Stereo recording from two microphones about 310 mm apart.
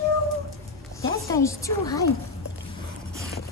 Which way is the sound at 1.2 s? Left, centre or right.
Centre.